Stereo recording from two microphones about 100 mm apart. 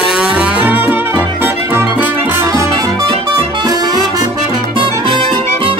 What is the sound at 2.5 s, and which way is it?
Music, 35° right (ahead or behind).